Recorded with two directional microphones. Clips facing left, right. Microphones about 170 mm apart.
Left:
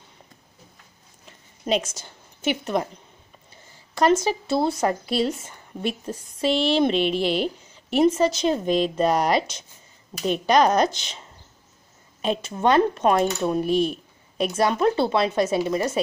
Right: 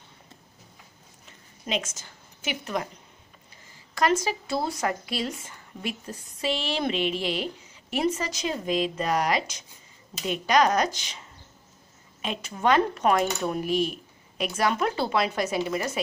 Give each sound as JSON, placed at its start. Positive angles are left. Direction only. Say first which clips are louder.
{"t": 1.7, "sound": "speech", "louder": "left 7 dB", "side_deg": 30}
{"t": 4.1, "sound": "a woman's voice", "louder": "left 5 dB", "side_deg": 25}